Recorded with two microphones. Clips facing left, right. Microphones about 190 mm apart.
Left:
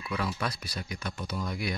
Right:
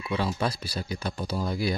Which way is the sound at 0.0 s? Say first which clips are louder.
Right 5 dB; 25° right (ahead or behind).